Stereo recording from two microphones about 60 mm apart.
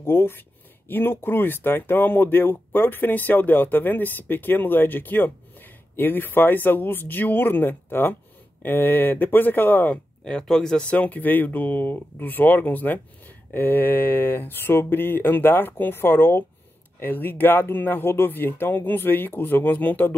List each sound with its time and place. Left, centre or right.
0.0 s speech: left
10.4 s speech: centre
11.0 s speech: left